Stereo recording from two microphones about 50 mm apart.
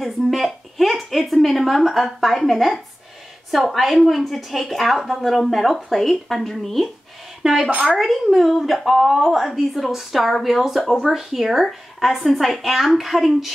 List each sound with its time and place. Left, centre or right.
0.0 s speech: centre
7.4 s a woman's voice: centre
8.0 s speech: centre